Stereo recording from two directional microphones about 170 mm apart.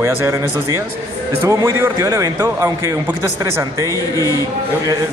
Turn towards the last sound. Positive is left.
turn(degrees=20)  # may be behind; listen again after turning